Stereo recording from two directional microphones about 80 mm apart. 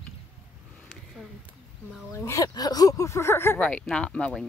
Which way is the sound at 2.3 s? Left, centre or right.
Left.